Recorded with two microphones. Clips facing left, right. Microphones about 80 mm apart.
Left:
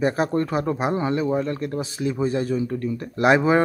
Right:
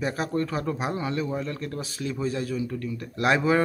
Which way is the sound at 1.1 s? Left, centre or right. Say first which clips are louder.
Left 6 dB; centre.